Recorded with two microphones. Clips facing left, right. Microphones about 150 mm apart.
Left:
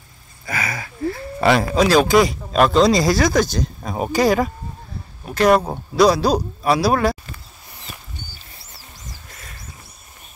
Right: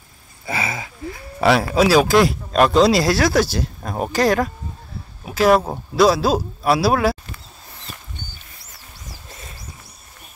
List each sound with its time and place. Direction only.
0.5 s speech: 25° right (ahead or behind)
1.4 s speech: centre (ahead or behind)
9.3 s a sound: 25° right (ahead or behind)